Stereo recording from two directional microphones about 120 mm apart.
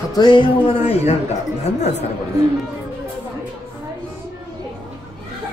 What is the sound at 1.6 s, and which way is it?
Speech, 65° left (ahead or behind).